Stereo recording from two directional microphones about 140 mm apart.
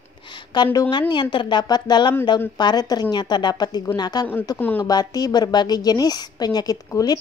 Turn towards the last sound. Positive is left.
turn(degrees=25)  # may be behind; listen again after turning